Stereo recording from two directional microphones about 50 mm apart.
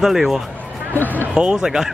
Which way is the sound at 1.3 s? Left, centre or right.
Centre.